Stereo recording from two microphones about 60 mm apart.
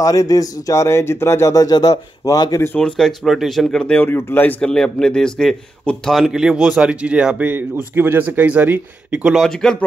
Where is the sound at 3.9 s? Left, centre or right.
Left.